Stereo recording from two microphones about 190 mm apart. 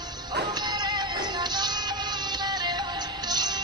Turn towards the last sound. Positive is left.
turn(degrees=-20)  # may be behind; listen again after turning